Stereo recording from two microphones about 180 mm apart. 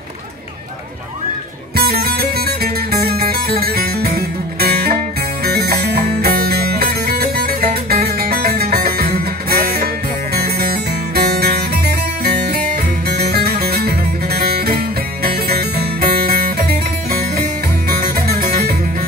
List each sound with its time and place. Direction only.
1.8 s music: 60° right (ahead or behind)